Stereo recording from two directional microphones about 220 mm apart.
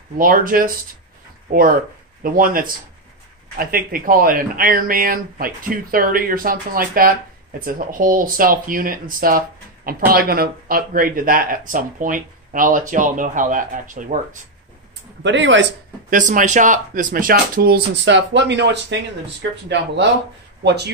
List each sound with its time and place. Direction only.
0.2 s speech: 40° right (ahead or behind)
15.2 s speech: 55° right (ahead or behind)
16.1 s speech: 35° right (ahead or behind); by 19.6 s 55° right (ahead or behind)
20.6 s speech: 50° right (ahead or behind)